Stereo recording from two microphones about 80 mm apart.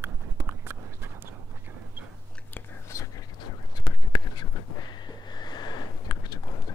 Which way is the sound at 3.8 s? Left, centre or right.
Left.